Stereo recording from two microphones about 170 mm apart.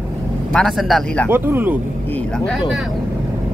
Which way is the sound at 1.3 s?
10° right (ahead or behind).